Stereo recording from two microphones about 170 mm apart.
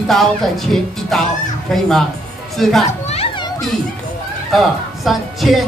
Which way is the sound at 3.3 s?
25° left (ahead or behind).